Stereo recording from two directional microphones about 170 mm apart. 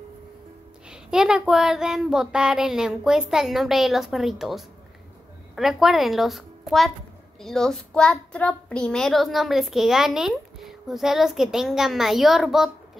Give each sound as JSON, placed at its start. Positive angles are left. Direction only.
{"t": 0.8, "sound": "a child's voice", "side_deg": -5}